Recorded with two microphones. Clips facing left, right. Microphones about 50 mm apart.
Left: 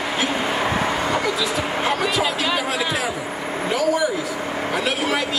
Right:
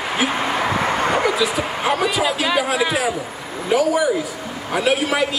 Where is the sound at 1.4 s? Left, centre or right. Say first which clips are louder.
Right 2 dB; centre.